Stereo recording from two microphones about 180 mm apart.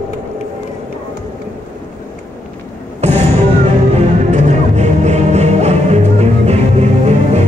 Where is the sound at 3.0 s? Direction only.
40° right (ahead or behind).